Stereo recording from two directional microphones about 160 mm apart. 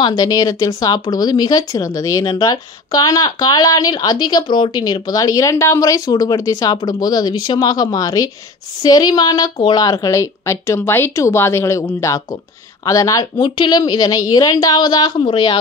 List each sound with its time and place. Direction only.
0.0 s speech: 25° left (ahead or behind)